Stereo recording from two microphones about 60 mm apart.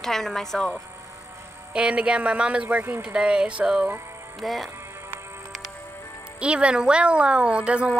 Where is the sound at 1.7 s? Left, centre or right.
Centre.